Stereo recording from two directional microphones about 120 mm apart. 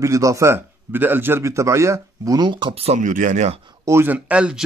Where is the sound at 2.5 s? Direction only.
40° right (ahead or behind).